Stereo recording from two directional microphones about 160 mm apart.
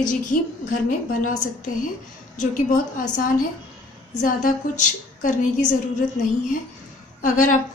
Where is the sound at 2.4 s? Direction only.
55° left (ahead or behind).